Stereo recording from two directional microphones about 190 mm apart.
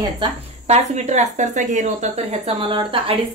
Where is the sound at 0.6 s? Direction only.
35° right (ahead or behind).